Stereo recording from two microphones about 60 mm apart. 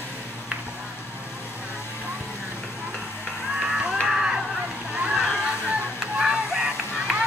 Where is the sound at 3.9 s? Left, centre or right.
Centre.